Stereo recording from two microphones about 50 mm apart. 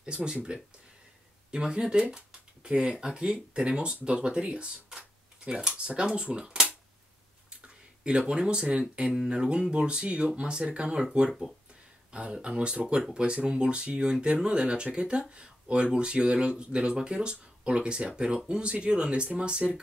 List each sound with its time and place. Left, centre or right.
0.0 s speech: centre